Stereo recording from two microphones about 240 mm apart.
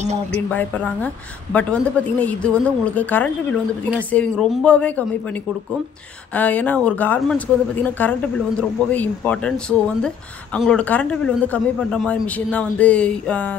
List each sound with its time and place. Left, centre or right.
0.0 s speech: right
0.5 s a woman's voice: centre